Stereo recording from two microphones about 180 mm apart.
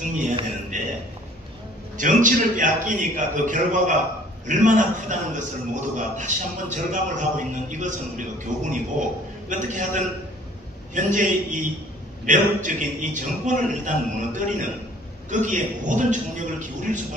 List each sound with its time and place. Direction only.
0.0 s music: 45° right (ahead or behind)
0.7 s a sound: 45° right (ahead or behind)
2.0 s a man's voice: 45° right (ahead or behind)